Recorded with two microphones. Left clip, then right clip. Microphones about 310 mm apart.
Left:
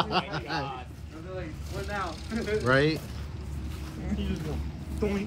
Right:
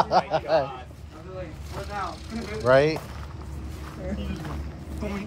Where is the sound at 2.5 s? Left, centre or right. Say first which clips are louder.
Right 5 dB; centre.